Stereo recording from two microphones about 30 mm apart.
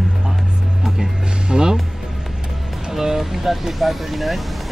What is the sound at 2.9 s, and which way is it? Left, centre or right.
Speech, centre.